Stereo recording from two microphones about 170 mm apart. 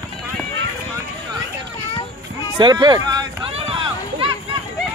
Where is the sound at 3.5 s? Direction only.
30° right (ahead or behind).